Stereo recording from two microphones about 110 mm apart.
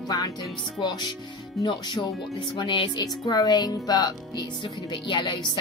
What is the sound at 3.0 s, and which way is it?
Music, 35° left (ahead or behind).